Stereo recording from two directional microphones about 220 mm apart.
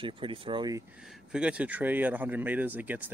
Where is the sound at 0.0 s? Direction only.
25° right (ahead or behind).